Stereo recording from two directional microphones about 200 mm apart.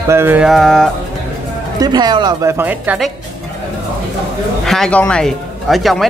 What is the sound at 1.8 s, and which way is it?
Speech, 20° right (ahead or behind).